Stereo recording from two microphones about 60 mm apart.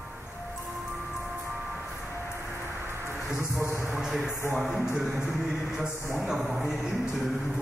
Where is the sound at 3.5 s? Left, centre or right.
Right.